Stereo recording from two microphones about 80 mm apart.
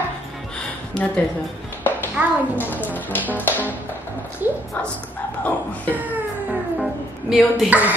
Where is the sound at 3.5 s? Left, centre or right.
Left.